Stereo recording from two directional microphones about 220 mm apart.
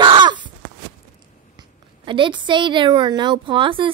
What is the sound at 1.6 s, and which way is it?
A woman's voice, 20° right (ahead or behind).